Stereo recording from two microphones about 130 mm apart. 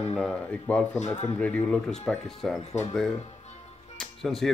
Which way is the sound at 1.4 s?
10° left (ahead or behind).